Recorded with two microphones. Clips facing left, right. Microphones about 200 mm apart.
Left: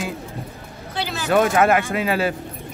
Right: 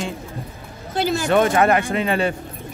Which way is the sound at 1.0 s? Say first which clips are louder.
Right 7 dB; 45° right (ahead or behind).